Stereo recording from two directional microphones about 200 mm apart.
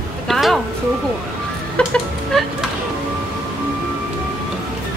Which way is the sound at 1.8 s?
5° left (ahead or behind).